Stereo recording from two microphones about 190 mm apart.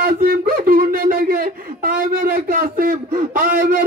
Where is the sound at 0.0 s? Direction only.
50° right (ahead or behind).